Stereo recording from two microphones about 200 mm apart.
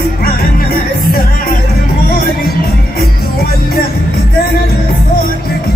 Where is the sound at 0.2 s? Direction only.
50° left (ahead or behind).